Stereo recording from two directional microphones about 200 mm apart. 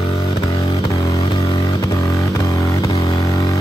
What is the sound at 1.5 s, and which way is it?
Vehicle, 30° left (ahead or behind).